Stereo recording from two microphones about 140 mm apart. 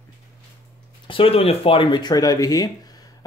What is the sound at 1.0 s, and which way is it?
Speech, 40° left (ahead or behind).